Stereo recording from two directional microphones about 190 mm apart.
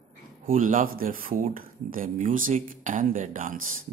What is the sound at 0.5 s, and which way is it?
Speech, 45° right (ahead or behind).